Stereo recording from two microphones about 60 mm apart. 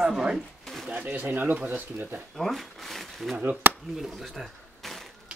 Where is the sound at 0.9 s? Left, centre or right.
Right.